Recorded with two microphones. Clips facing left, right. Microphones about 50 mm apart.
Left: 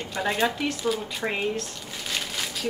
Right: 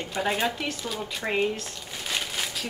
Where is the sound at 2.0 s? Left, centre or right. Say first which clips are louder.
Right 1 dB; centre.